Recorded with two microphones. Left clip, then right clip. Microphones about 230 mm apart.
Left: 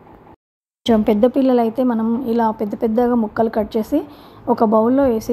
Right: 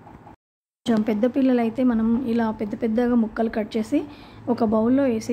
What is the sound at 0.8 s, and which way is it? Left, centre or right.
Speech, left.